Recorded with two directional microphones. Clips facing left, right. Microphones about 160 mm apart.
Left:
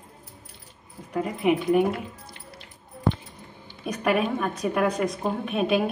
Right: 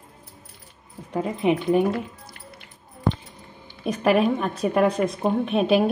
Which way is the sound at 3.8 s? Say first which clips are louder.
Right 4 dB; 30° right (ahead or behind).